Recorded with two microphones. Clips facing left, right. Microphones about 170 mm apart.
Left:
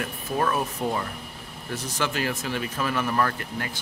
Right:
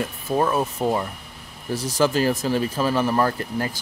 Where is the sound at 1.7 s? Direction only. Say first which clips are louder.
Right 8 dB; 35° right (ahead or behind).